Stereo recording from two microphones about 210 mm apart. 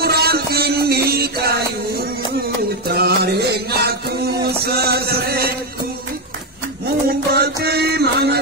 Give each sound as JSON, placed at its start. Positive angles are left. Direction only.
{"t": 0.0, "sound": "music", "side_deg": -50}
{"t": 2.9, "sound": "music", "side_deg": -50}
{"t": 7.1, "sound": "music", "side_deg": -50}